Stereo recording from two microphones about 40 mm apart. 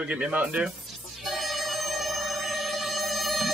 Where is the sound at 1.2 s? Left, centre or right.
Centre.